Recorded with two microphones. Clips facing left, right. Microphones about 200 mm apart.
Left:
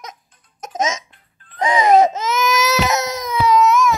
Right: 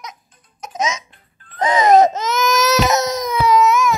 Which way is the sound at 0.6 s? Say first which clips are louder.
Left 1 dB; 45° left (ahead or behind).